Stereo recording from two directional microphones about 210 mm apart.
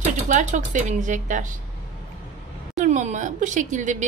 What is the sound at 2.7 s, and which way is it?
A woman's voice, 35° right (ahead or behind).